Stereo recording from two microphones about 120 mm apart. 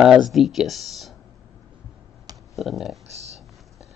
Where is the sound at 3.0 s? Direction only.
65° right (ahead or behind).